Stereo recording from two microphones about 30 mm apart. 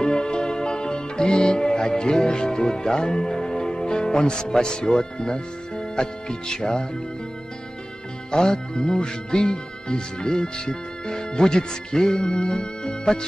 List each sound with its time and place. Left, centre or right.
0.0 s music: left
8.3 s speech: left